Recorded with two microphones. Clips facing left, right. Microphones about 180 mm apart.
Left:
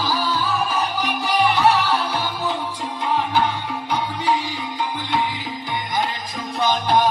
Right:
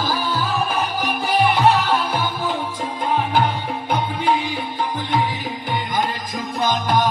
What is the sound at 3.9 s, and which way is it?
Music, 50° right (ahead or behind).